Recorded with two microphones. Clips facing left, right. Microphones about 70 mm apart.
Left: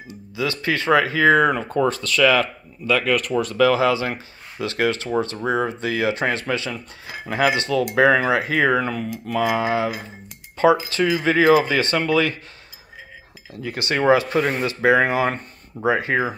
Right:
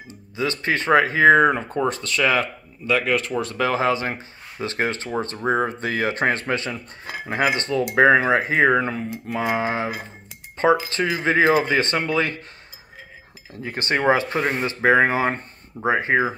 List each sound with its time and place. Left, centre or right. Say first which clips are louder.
0.1 s speech: even; right
13.5 s speech: right 1 dB; right